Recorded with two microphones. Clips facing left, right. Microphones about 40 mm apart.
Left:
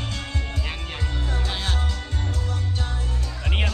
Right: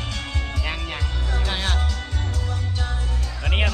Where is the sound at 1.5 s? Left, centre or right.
Right.